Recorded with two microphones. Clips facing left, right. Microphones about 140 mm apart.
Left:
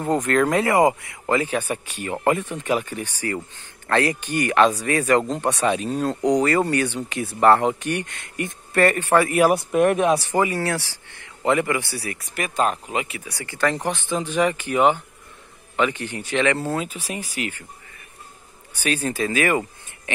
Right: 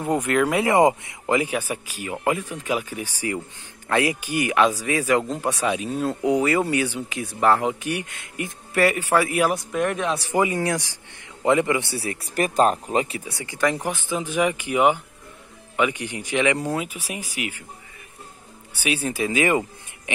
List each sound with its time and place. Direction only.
0.0 s speech: 10° right (ahead or behind)
0.7 s speech: 20° right (ahead or behind); by 9.5 s centre (ahead or behind)
9.7 s speech: 15° left (ahead or behind)
10.3 s speech: 15° right (ahead or behind)
18.8 s speech: 10° right (ahead or behind)